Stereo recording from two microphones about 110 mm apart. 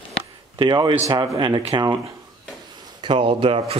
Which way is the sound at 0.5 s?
45° right (ahead or behind).